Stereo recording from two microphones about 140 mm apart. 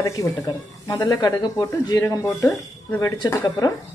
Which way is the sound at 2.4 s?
10° left (ahead or behind).